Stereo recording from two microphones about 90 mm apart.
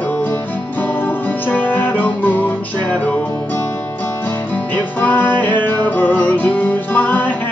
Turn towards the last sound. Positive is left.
turn(degrees=20)  # may be behind; listen again after turning